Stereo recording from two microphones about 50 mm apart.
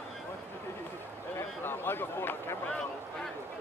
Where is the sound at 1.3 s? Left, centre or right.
Left.